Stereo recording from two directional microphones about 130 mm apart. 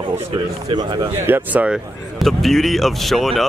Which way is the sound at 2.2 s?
Centre (ahead or behind).